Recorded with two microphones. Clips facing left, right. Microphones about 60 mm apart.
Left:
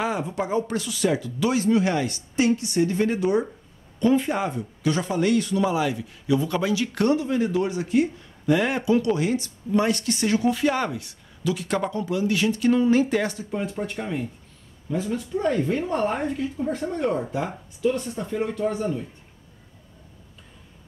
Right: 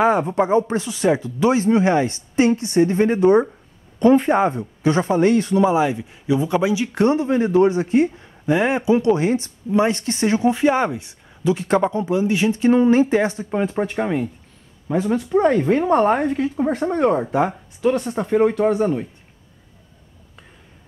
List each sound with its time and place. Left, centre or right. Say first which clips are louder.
0.0 s speech: right 9 dB; right
0.5 s speech: right 7 dB; right
13.5 s a woman's voice: right 7 dB; right